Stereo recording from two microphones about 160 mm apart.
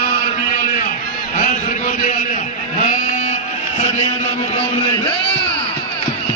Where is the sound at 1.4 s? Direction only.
55° left (ahead or behind).